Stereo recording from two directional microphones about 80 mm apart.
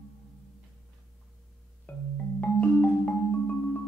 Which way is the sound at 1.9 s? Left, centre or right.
Centre.